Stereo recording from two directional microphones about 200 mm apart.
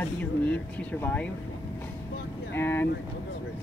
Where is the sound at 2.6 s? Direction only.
10° left (ahead or behind).